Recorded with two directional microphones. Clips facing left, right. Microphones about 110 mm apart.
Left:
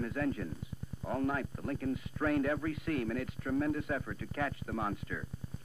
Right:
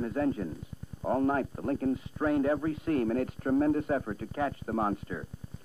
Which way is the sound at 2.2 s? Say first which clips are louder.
Right 4 dB; 25° right (ahead or behind).